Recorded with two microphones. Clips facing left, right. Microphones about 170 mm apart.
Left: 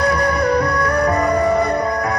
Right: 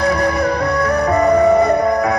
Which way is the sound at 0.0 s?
25° right (ahead or behind).